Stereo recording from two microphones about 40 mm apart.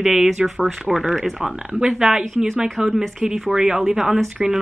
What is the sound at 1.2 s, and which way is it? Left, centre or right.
Speech, centre.